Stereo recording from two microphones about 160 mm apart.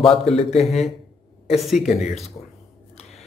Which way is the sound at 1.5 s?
Centre (ahead or behind).